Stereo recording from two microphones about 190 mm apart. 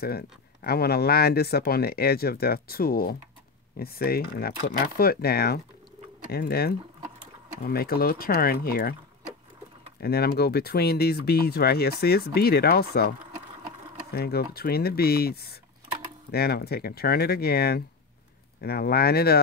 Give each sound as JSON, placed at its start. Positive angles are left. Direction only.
{"t": 0.7, "sound": "speech", "side_deg": 55}
{"t": 9.9, "sound": "speech", "side_deg": 55}
{"t": 14.1, "sound": "speech", "side_deg": 55}